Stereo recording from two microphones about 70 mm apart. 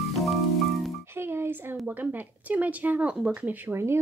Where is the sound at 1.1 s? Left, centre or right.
Right.